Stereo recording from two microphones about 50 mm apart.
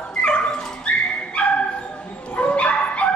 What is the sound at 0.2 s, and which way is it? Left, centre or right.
Dog, centre.